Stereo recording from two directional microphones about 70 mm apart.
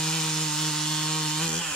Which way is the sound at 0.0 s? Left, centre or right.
Centre.